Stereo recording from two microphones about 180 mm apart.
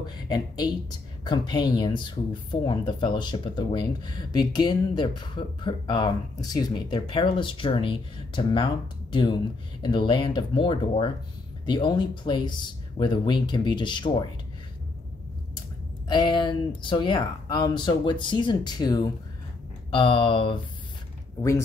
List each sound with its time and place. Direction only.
0.0 s speech: 25° left (ahead or behind)
16.1 s speech: 25° left (ahead or behind)